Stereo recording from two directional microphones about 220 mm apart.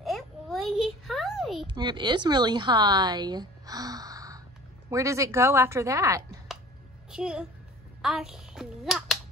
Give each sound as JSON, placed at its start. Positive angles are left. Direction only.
{"t": 0.0, "sound": "a sound", "side_deg": 0}
{"t": 1.7, "sound": "a woman's voice", "side_deg": -20}
{"t": 7.1, "sound": "a woman's voice", "side_deg": -5}